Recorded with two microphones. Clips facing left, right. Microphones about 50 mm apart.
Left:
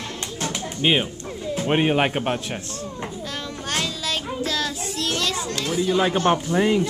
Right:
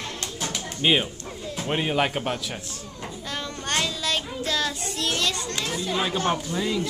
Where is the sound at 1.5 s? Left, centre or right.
Left.